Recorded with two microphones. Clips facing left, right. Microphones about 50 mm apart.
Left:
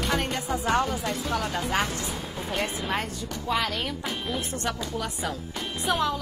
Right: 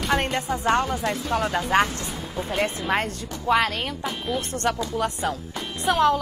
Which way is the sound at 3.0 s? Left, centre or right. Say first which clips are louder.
Right 3 dB; right.